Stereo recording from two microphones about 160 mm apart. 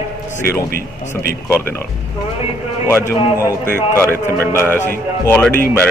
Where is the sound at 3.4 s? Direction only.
15° right (ahead or behind).